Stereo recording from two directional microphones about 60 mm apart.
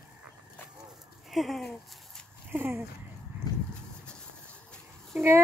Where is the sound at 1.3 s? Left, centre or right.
Centre.